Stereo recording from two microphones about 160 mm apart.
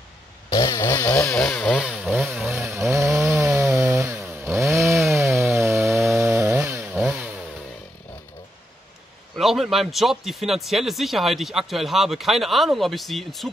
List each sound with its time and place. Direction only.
0.5 s fart: 20° left (ahead or behind)
1.0 s chainsaw: 5° left (ahead or behind)
2.6 s chainsaw: 15° right (ahead or behind)
5.0 s chainsaw: centre (ahead or behind)
5.3 s chainsaw: 15° right (ahead or behind); by 7.2 s centre (ahead or behind)
9.4 s speech: centre (ahead or behind)